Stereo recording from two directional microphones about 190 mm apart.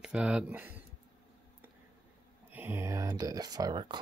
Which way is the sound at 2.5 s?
10° right (ahead or behind).